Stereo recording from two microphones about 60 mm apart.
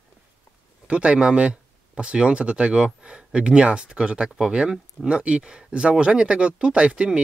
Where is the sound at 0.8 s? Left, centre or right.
Centre.